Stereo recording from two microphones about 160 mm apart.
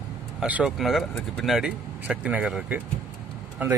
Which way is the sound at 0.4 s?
5° right (ahead or behind).